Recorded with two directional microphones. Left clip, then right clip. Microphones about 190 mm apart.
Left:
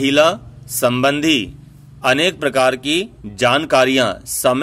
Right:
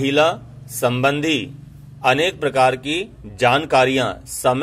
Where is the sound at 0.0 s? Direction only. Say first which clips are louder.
Left 3 dB; 45° left (ahead or behind).